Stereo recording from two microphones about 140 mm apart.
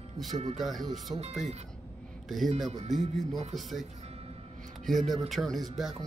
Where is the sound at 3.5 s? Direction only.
Centre (ahead or behind).